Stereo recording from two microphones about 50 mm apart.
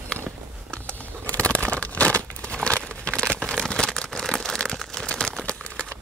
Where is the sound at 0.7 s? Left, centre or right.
Left.